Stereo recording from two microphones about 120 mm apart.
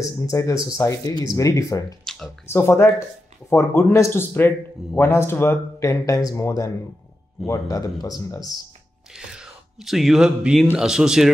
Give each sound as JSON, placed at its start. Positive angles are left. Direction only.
{"t": 0.2, "sound": "speech", "side_deg": 25}
{"t": 2.0, "sound": "a sound", "side_deg": 5}
{"t": 2.4, "sound": "speech", "side_deg": 20}
{"t": 9.1, "sound": "a man's voice", "side_deg": -5}